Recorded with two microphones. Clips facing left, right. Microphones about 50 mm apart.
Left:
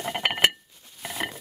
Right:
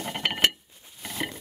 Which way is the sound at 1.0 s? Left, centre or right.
Centre.